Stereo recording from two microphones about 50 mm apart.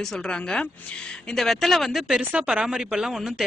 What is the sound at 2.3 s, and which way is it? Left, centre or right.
Speech, right.